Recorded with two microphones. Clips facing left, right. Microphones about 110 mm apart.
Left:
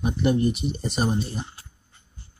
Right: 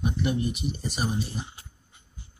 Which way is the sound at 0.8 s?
30° left (ahead or behind).